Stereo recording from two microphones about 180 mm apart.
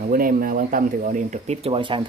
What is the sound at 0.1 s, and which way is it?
Speech, 55° right (ahead or behind).